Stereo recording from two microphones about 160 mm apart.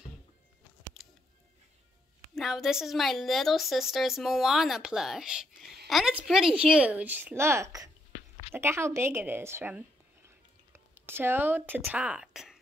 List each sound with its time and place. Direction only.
2.3 s a woman's voice: centre (ahead or behind)